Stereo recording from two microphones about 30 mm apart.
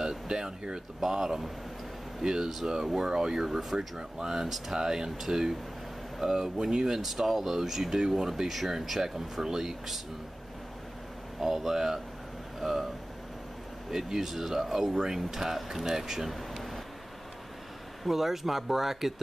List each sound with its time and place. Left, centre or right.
0.0 s speech: right
4.7 s speech: right
5.1 s speech: centre
7.2 s speech: centre
11.3 s speech: centre
13.9 s speech: centre
18.0 s speech: centre